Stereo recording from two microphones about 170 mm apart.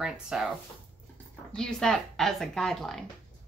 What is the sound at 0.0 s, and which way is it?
Speech, 5° right (ahead or behind).